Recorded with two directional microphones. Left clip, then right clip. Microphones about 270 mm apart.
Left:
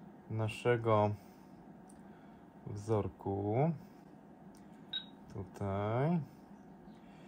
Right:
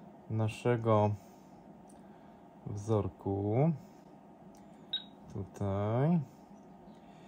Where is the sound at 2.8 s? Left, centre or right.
Right.